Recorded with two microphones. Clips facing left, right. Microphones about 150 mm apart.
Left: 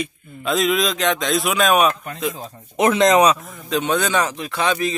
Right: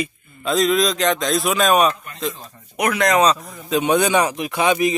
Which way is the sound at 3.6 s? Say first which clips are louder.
Right 3 dB; 10° right (ahead or behind).